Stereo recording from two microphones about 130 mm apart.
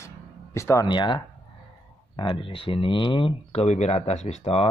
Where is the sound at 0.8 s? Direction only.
35° left (ahead or behind).